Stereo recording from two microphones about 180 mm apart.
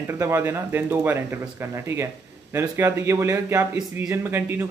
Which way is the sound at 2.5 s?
15° right (ahead or behind).